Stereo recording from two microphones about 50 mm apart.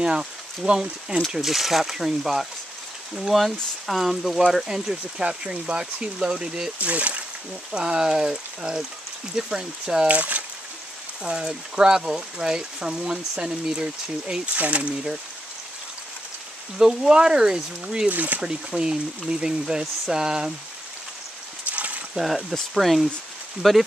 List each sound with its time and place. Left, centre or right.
0.0 s speech: centre
6.8 s speech: right
10.0 s speech: right
11.2 s speech: centre
16.7 s speech: centre
18.0 s speech: right
18.4 s speech: centre
21.6 s a sound: right
22.1 s speech: centre